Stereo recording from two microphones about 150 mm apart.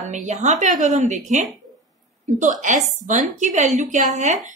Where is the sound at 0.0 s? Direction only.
55° right (ahead or behind).